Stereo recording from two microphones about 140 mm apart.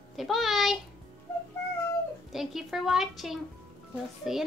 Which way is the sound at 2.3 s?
Centre (ahead or behind).